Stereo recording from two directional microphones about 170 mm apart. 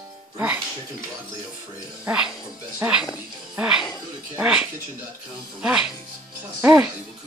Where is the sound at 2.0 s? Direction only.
5° right (ahead or behind).